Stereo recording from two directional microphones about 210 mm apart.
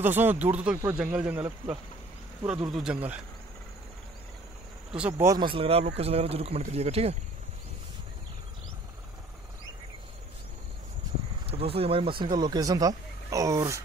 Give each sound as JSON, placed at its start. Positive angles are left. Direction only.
{"t": 0.0, "sound": "speech", "side_deg": -10}
{"t": 5.1, "sound": "speech", "side_deg": -15}
{"t": 11.4, "sound": "speech", "side_deg": -25}